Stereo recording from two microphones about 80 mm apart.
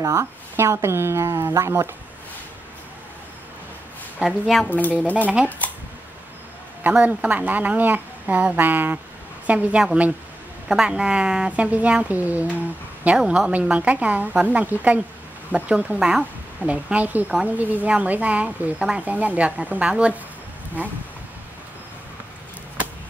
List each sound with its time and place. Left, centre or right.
0.0 s speech: right
4.2 s a woman's voice: centre
4.6 s speech: left
5.1 s a woman's voice: centre
6.9 s a woman's voice: centre
10.7 s a woman's voice: centre
13.2 s a woman's voice: centre
13.5 s a woman's voice: centre